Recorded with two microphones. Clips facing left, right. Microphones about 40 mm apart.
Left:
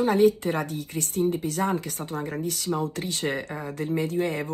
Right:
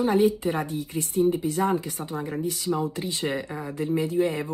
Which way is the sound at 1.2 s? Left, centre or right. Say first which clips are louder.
Right 1 dB; right.